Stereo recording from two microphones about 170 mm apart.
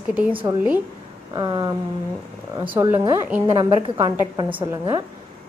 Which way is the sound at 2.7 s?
15° right (ahead or behind).